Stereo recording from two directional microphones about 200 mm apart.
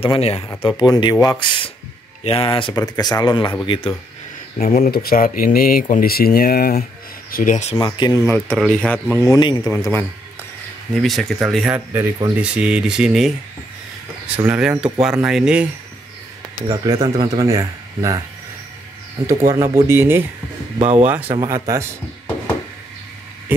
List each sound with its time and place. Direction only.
0.0 s speech: 30° left (ahead or behind)
4.6 s speech: 45° left (ahead or behind)
7.7 s speech: 20° left (ahead or behind)
8.5 s speech: 5° left (ahead or behind)
9.6 s speech: 5° left (ahead or behind)
14.4 s speech: 5° right (ahead or behind)
16.6 s speech: 20° right (ahead or behind)
20.8 s speech: 35° right (ahead or behind)
21.5 s speech: 15° right (ahead or behind)